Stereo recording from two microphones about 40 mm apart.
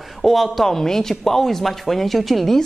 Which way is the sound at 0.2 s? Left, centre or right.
Centre.